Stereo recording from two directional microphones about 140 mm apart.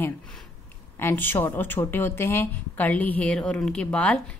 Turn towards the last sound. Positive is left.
turn(degrees=10)  # may be behind; listen again after turning